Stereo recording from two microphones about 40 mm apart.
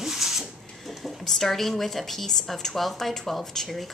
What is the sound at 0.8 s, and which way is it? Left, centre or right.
Speech, centre.